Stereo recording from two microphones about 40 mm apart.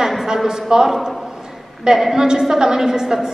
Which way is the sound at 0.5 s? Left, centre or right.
Centre.